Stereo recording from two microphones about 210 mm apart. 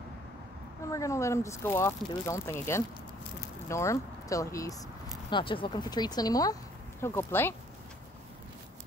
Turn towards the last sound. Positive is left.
turn(degrees=10)  # may be behind; listen again after turning